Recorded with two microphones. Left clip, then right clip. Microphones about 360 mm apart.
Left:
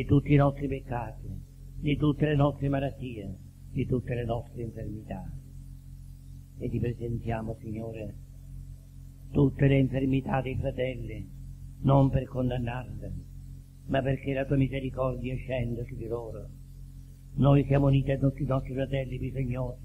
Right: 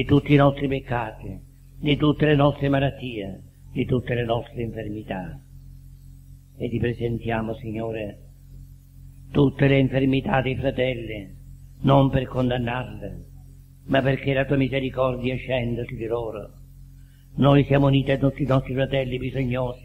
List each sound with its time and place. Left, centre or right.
0.0 s a man's voice: right
6.6 s a man's voice: right
9.3 s a man's voice: right